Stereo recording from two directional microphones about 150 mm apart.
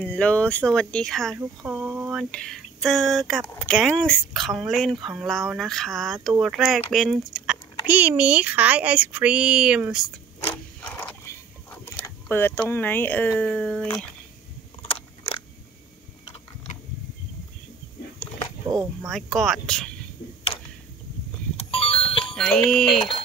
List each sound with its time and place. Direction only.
0.0 s speech: 10° left (ahead or behind)
1.7 s a sound: 10° right (ahead or behind)
2.3 s speech: 5° left (ahead or behind)
7.8 s speech: 10° right (ahead or behind)
10.8 s a sound: 15° left (ahead or behind)
12.6 s speech: 15° left (ahead or behind)
14.8 s biting: 35° left (ahead or behind)
19.0 s speech: centre (ahead or behind)
20.5 s tick-tock: 35° left (ahead or behind)
21.5 s music: 40° left (ahead or behind)
22.3 s speech: 5° left (ahead or behind)